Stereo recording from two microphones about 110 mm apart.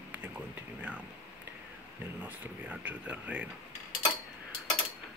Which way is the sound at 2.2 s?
15° right (ahead or behind).